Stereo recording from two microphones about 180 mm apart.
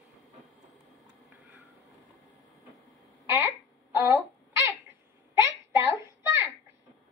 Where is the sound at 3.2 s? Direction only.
10° right (ahead or behind).